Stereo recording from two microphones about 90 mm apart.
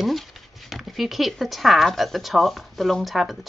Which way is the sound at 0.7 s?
Centre (ahead or behind).